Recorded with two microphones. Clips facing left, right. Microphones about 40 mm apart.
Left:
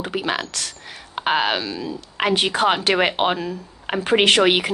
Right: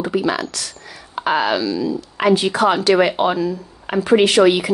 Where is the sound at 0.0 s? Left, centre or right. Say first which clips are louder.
Right 5 dB; left.